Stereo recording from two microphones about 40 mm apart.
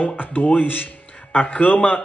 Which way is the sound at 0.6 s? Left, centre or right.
Left.